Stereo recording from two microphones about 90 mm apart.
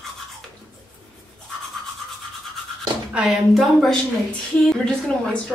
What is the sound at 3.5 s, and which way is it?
A woman's voice, centre (ahead or behind).